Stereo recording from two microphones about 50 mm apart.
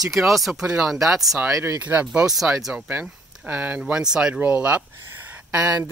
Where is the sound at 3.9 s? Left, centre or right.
Centre.